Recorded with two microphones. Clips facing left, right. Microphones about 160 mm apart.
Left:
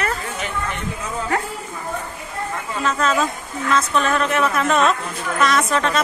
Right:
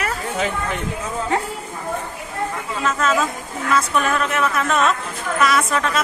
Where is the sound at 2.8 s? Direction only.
Centre (ahead or behind).